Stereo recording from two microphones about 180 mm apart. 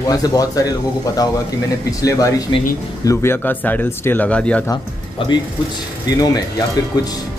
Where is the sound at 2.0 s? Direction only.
20° left (ahead or behind).